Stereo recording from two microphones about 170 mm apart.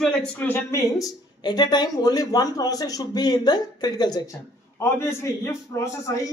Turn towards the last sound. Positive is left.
turn(degrees=20)  # may be behind; listen again after turning